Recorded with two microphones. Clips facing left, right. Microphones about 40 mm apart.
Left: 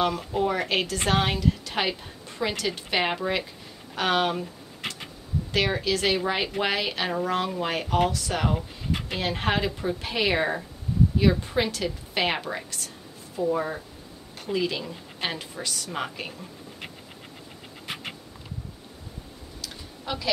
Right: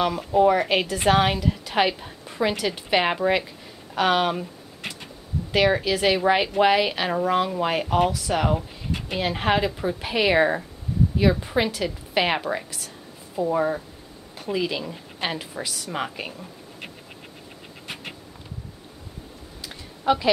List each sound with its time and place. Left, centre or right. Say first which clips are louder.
0.0 s a woman's voice: right 6 dB; centre
5.5 s a woman's voice: right 5 dB; centre
19.6 s a sound: right 11 dB; right